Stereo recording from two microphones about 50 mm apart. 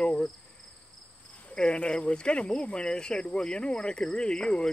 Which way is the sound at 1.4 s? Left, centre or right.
Left.